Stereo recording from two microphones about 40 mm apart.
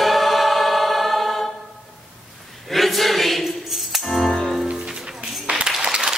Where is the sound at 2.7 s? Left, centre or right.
Centre.